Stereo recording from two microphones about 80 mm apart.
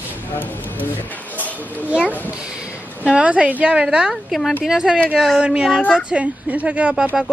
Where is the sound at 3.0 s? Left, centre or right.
Centre.